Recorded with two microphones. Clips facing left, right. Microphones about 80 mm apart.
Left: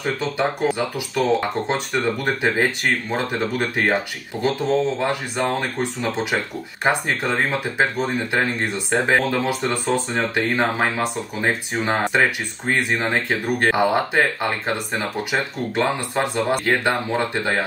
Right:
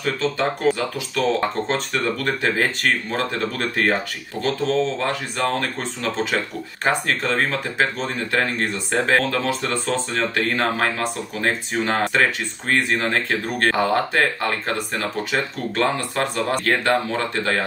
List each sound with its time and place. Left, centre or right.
0.0 s speech: centre